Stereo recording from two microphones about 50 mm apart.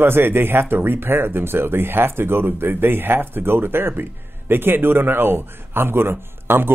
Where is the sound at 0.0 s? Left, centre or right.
Right.